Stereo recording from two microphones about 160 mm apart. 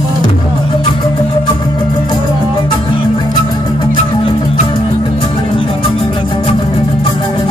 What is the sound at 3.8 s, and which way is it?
Music, 30° left (ahead or behind).